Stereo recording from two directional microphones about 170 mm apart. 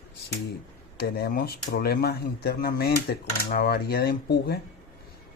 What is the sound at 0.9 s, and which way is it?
Speech, 70° left (ahead or behind).